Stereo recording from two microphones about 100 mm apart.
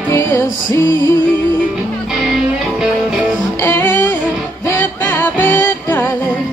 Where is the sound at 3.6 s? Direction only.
25° left (ahead or behind).